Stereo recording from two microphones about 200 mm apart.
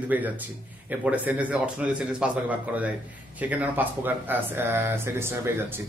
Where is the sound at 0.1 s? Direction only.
10° right (ahead or behind).